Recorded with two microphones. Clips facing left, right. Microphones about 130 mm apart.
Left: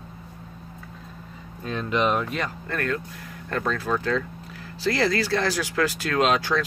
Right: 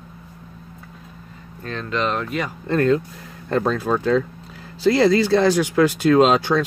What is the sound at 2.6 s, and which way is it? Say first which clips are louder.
Speech: right 10 dB; 25° right (ahead or behind).